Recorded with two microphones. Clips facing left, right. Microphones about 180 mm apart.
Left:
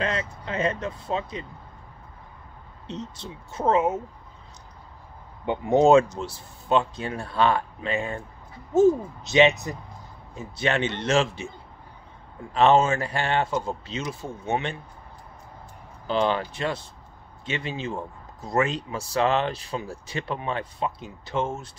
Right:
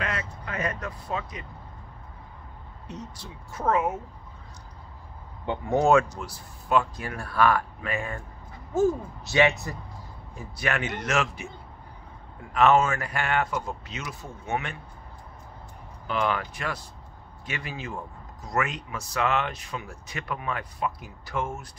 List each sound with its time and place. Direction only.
0.0 s speech: 25° left (ahead or behind)
2.9 s speech: 25° left (ahead or behind)
5.4 s speech: 20° left (ahead or behind)
12.5 s speech: 30° left (ahead or behind)
16.1 s speech: 30° left (ahead or behind)